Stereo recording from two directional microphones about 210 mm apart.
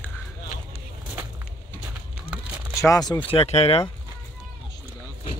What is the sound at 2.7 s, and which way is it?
Speech, 15° left (ahead or behind).